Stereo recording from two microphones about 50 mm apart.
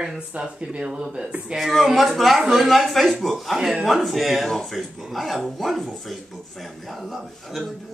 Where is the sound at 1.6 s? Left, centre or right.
Centre.